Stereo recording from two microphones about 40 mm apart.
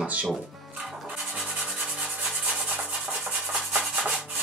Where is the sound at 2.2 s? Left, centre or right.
Right.